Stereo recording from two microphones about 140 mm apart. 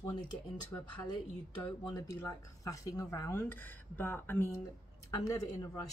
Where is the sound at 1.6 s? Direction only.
25° left (ahead or behind).